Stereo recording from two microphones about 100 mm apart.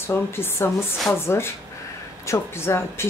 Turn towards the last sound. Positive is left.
turn(degrees=25)  # may be behind; listen again after turning